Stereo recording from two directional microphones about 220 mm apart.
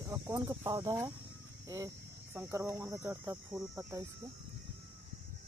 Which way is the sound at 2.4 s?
10° right (ahead or behind).